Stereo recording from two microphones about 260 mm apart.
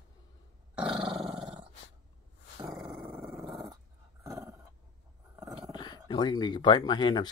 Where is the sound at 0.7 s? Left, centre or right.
Centre.